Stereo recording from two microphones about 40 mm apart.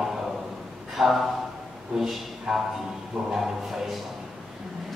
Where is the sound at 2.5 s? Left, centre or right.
Centre.